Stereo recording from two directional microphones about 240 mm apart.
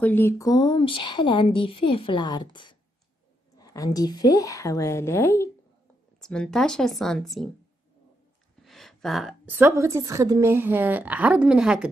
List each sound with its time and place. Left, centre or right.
0.0 s a woman's voice: centre
8.6 s a woman's voice: centre